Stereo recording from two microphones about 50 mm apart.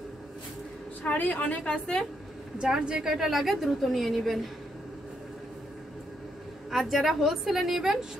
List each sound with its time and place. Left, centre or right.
1.0 s a woman's voice: left; by 2.0 s centre
2.6 s a woman's voice: centre
6.7 s a woman's voice: centre